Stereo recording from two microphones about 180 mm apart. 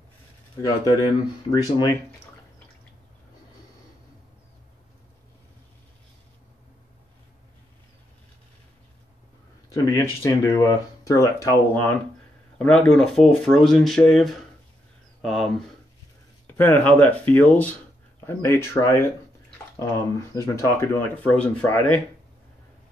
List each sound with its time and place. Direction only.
0.6 s speech: 20° left (ahead or behind)
9.7 s speech: 20° left (ahead or behind)